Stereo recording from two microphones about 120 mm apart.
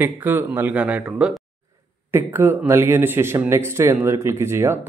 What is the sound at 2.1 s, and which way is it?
Speech, 15° right (ahead or behind).